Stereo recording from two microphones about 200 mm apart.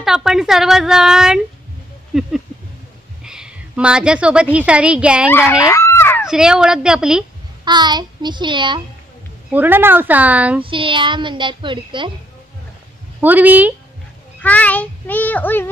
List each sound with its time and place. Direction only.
0.0 s a woman's voice: centre (ahead or behind)
3.3 s a woman's voice: 5° right (ahead or behind)
5.3 s a sound: 15° left (ahead or behind)
6.2 s a woman's voice: 5° right (ahead or behind)
7.6 s a woman's voice: 20° right (ahead or behind)
9.5 s speech: 10° right (ahead or behind)
10.6 s a woman's voice: 25° right (ahead or behind)
13.2 s speech: 10° right (ahead or behind)
14.4 s a child's voice: 10° left (ahead or behind)